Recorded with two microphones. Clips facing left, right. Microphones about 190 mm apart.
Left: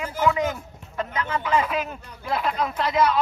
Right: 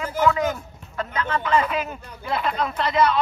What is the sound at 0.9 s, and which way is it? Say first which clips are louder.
Speech: right 1 dB; 10° left (ahead or behind).